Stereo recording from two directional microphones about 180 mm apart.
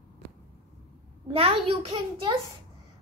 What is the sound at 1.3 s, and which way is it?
Speech, 30° right (ahead or behind).